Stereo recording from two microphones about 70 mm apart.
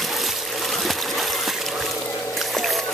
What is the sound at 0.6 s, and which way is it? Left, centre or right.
Water, centre.